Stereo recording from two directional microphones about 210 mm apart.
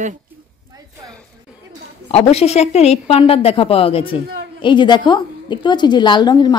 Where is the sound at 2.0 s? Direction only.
30° left (ahead or behind).